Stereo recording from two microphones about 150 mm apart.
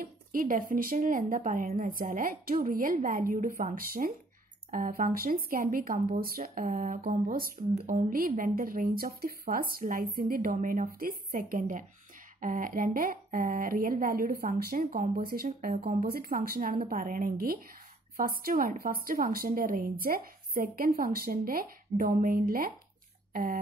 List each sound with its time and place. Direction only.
0.0 s a woman's voice: 70° right (ahead or behind)
7.1 s a woman's voice: 70° right (ahead or behind)
15.7 s speech: 50° right (ahead or behind)
16.1 s a woman's voice: 80° right